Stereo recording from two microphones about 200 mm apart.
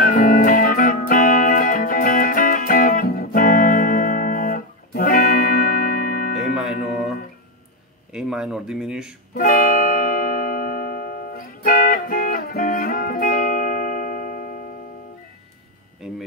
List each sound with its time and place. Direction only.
0.0 s music: 45° left (ahead or behind)
6.5 s music: 5° right (ahead or behind)
8.1 s speech: 5° right (ahead or behind)
9.3 s music: 45° left (ahead or behind)